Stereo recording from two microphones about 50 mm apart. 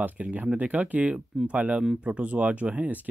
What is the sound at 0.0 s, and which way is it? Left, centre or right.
Speech, right.